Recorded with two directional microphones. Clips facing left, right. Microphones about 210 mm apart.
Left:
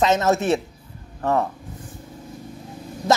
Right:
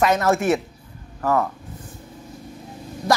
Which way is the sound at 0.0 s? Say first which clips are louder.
Even; 20° left (ahead or behind).